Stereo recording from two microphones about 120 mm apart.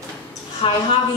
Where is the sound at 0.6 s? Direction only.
50° left (ahead or behind).